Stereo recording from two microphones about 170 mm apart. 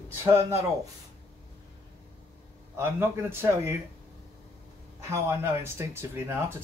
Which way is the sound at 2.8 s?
15° right (ahead or behind).